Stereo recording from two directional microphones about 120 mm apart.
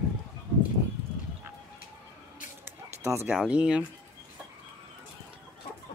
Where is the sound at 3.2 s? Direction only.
10° right (ahead or behind).